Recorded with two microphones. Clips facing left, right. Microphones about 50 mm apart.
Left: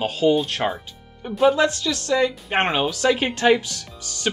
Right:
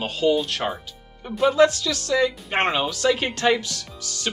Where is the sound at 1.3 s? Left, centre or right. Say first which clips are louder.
Even; centre; by 4.3 s left.